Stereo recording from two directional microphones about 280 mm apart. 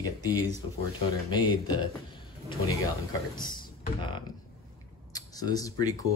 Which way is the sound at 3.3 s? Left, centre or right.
Centre.